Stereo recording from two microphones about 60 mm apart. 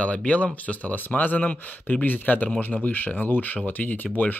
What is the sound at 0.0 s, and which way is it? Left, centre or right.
Speech, centre.